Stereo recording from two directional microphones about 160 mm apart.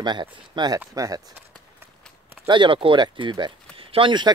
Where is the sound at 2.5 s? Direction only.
30° right (ahead or behind).